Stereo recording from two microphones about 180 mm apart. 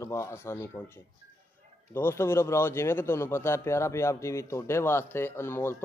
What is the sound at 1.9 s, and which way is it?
Speech, 15° left (ahead or behind).